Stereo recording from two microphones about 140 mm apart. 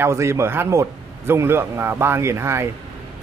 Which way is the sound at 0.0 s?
20° right (ahead or behind).